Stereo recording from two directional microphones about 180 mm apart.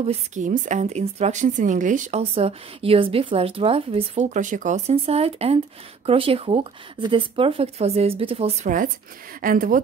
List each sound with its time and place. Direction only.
0.0 s a woman's voice: 40° right (ahead or behind)
8.6 s speech: 50° right (ahead or behind)